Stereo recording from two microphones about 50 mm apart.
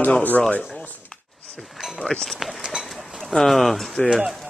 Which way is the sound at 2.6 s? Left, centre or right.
Centre.